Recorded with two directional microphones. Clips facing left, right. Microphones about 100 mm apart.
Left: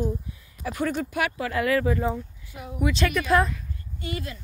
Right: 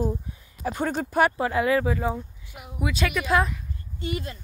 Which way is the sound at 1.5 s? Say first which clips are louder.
Right 1 dB; 20° right (ahead or behind).